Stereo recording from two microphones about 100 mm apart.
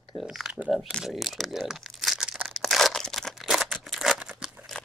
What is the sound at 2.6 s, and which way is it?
Tearing, centre (ahead or behind).